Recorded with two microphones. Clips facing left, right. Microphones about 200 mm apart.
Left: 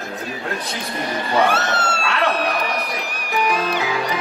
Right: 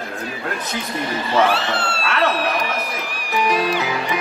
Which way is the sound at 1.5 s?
45° left (ahead or behind).